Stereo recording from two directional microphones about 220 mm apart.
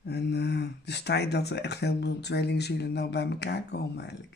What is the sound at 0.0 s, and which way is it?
Speech, 50° left (ahead or behind).